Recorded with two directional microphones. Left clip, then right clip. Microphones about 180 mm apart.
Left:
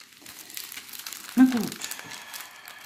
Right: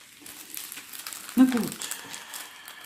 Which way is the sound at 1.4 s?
30° left (ahead or behind).